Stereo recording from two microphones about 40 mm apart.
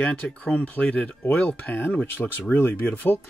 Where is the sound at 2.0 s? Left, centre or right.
Left.